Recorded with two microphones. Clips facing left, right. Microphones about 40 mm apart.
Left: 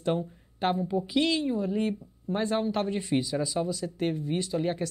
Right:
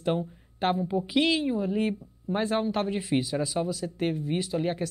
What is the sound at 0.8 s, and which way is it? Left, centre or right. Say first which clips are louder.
Speech: right 1 dB; centre.